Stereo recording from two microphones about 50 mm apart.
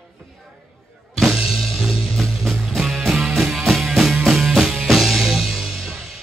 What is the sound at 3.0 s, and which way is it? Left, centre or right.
Music, centre.